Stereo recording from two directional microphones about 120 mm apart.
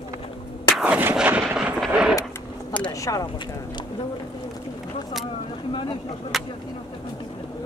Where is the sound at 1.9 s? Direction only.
5° right (ahead or behind).